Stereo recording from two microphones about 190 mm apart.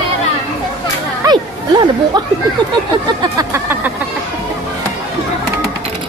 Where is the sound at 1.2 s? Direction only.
20° right (ahead or behind).